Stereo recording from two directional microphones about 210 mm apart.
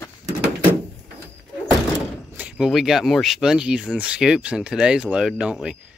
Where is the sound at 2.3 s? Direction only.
5° right (ahead or behind).